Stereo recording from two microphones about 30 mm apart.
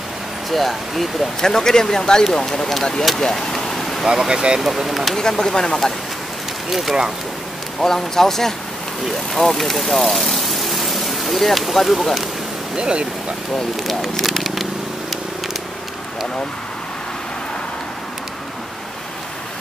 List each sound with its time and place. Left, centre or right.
0.5 s speech: centre
1.4 s speech: centre
3.2 s vehicle: centre
4.1 s speech: right
4.6 s speech: centre
5.4 s speech: left
6.7 s speech: centre
7.8 s speech: centre
12.7 s speech: right
13.7 s speech: centre
14.3 s a sound: centre